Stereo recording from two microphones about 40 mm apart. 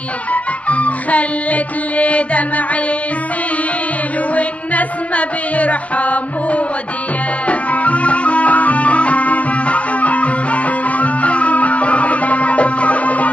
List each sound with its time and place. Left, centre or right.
0.3 s music: left
4.4 s music: left